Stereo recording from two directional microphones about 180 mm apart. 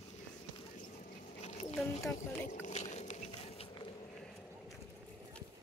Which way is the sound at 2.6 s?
40° left (ahead or behind).